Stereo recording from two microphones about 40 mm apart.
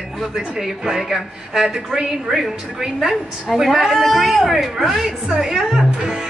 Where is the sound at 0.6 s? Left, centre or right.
Centre.